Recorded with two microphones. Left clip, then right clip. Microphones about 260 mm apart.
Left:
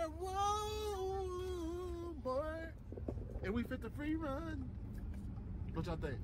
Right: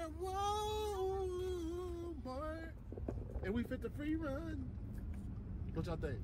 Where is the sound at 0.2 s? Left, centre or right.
Centre.